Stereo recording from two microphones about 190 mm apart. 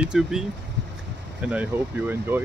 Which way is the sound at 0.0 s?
5° right (ahead or behind).